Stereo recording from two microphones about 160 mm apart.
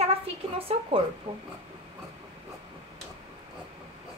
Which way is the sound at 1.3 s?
35° right (ahead or behind).